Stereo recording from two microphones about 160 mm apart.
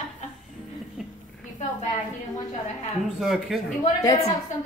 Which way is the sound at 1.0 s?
Centre (ahead or behind).